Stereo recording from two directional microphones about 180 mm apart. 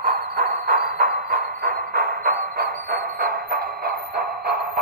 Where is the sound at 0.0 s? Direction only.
45° right (ahead or behind).